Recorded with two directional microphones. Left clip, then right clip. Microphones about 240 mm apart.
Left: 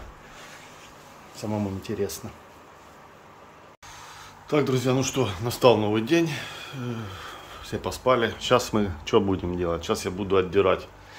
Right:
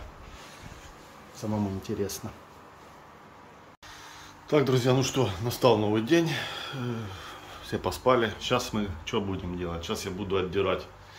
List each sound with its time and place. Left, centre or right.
1.4 s speech: centre
4.5 s speech: centre